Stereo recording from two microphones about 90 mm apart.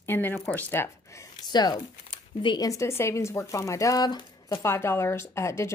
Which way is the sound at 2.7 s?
30° left (ahead or behind).